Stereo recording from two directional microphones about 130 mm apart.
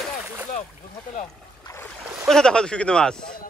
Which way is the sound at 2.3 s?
5° left (ahead or behind).